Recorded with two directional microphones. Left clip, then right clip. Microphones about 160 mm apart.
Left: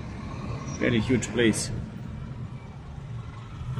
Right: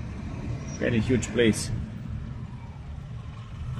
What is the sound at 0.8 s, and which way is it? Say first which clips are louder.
Speech: left 1 dB; 10° left (ahead or behind).